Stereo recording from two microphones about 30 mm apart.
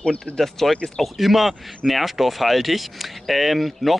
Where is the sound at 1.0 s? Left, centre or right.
Centre.